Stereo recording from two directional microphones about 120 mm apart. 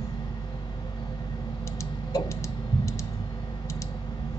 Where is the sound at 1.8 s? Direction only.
25° left (ahead or behind).